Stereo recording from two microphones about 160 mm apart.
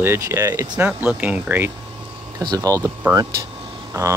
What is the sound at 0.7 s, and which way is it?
Speech, 5° right (ahead or behind).